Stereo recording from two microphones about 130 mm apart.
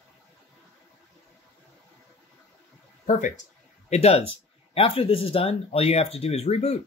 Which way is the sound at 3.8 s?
55° left (ahead or behind).